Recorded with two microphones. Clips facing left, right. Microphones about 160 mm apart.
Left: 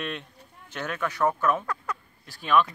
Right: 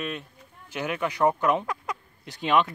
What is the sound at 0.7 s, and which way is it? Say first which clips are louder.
Speech: right 2 dB; 10° right (ahead or behind).